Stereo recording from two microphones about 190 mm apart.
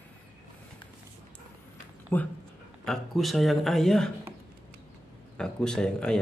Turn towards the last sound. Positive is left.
turn(degrees=5)  # may be behind; listen again after turning